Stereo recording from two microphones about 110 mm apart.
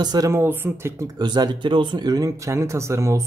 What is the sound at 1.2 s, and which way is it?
Speech, 40° right (ahead or behind).